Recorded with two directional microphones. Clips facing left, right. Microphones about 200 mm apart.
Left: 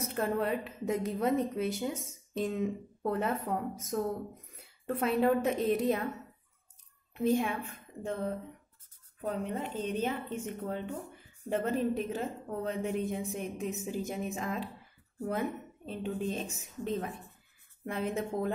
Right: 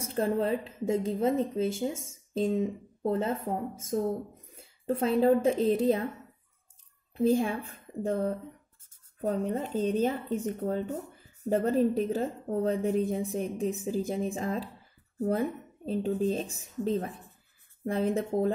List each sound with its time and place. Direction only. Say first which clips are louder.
0.0 s a woman's voice: right 3 dB; 30° right (ahead or behind)
7.2 s a woman's voice: right 4 dB; 30° right (ahead or behind)